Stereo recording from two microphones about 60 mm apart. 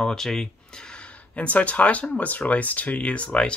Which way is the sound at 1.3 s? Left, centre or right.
Left.